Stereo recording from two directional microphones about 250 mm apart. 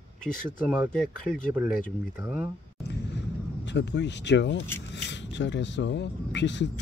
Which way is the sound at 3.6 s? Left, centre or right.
Left.